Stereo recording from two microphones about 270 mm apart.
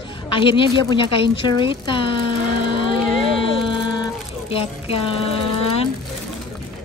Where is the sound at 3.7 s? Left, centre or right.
Centre.